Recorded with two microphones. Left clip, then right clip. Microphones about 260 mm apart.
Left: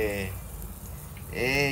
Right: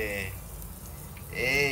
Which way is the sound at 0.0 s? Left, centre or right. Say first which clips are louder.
Left 3 dB; centre.